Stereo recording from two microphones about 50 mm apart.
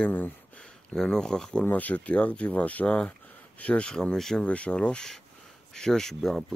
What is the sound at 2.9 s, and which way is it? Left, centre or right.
Speech, left.